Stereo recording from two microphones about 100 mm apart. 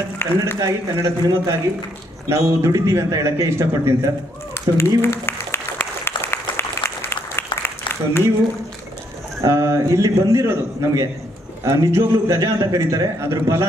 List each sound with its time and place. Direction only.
0.2 s speech: 20° left (ahead or behind)
0.6 s a man's voice: 30° right (ahead or behind)
4.7 s speech: 40° right (ahead or behind)
5.1 s applause: 25° left (ahead or behind)
7.6 s a sound: 25° left (ahead or behind)
9.4 s a man's voice: 30° right (ahead or behind)